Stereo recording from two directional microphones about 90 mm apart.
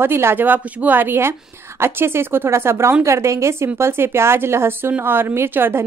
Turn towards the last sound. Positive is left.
turn(degrees=-25)  # may be behind; listen again after turning